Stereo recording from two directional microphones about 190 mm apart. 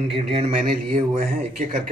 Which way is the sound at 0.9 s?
40° right (ahead or behind).